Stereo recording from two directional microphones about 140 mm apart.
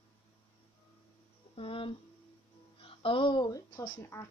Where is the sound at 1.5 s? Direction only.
40° left (ahead or behind).